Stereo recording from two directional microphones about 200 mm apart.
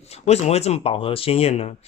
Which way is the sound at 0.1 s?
30° left (ahead or behind).